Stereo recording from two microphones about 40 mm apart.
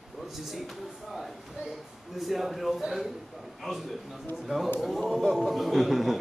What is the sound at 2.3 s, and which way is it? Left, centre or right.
Speech, centre.